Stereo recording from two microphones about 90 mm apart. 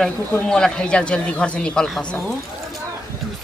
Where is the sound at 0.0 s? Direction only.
5° left (ahead or behind).